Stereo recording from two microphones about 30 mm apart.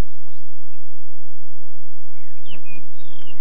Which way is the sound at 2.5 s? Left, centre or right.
Right.